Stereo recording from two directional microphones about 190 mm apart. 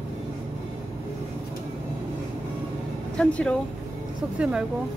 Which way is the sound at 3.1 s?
5° left (ahead or behind).